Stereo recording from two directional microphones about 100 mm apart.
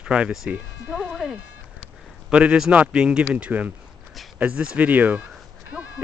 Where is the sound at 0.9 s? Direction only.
5° right (ahead or behind).